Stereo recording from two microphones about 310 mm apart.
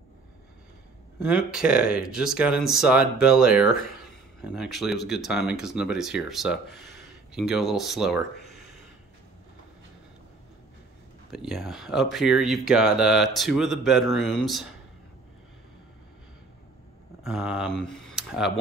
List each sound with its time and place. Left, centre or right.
1.2 s speech: centre
11.2 s speech: centre
17.2 s speech: centre